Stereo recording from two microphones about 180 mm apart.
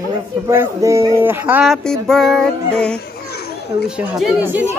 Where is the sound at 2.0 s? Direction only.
Centre (ahead or behind).